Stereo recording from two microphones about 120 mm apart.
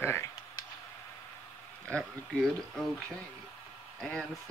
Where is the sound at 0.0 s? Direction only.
20° left (ahead or behind).